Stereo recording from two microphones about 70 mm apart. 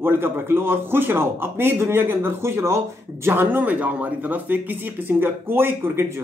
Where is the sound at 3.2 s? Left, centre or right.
Right.